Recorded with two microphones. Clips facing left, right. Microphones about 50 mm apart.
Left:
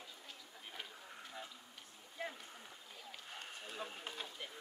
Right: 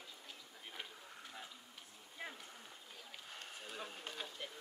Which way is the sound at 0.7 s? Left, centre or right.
Centre.